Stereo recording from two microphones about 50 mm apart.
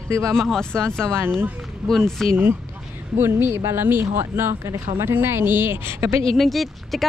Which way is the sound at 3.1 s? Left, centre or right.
Right.